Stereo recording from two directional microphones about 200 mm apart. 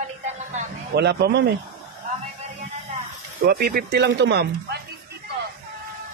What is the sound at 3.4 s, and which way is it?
Speech, 50° right (ahead or behind).